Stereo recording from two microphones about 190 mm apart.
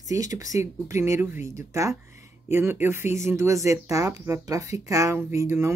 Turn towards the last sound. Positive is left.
turn(degrees=-15)  # may be behind; listen again after turning